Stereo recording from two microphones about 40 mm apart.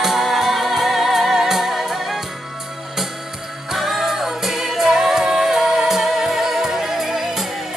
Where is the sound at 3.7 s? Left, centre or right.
Centre.